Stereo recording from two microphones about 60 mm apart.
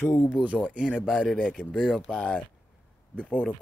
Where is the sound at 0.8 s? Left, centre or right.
Centre.